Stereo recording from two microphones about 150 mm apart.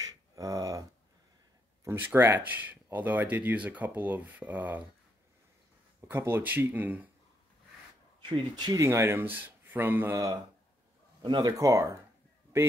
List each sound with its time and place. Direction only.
0.0 s a sound: 25° right (ahead or behind)
1.9 s speech: 15° right (ahead or behind)
5.9 s speech: 15° right (ahead or behind)
8.3 s speech: 30° right (ahead or behind)